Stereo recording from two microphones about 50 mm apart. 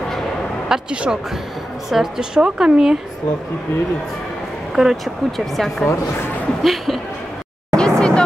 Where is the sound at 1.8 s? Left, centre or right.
Centre.